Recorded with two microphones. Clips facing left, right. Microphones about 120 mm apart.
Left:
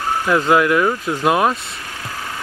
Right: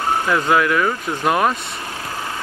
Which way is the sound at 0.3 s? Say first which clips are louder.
Left 4 dB; 20° left (ahead or behind).